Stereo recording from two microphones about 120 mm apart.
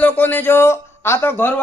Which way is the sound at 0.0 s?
15° left (ahead or behind).